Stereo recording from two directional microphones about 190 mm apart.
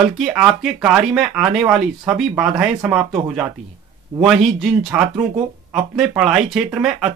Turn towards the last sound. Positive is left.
turn(degrees=-5)  # may be behind; listen again after turning